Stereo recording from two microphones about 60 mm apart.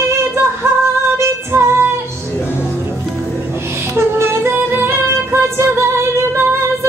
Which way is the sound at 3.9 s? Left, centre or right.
Right.